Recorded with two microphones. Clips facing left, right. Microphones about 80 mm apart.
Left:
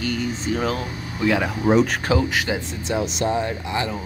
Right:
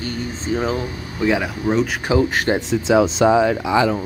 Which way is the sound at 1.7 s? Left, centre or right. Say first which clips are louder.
Left 2 dB; centre.